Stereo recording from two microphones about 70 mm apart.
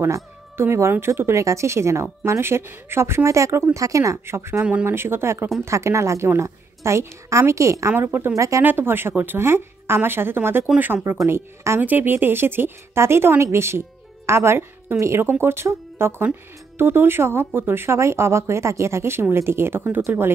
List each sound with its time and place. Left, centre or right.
0.0 s a woman's voice: right
8.0 s speech: right
8.4 s a woman's voice: right
8.6 s speech: right
11.8 s speech: right